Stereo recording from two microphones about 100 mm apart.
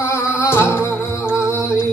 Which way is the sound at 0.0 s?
30° left (ahead or behind).